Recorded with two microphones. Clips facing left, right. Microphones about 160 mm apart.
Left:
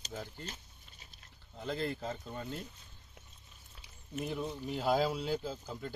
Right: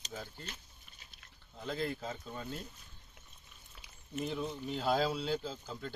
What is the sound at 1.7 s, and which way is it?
Speech, 10° right (ahead or behind).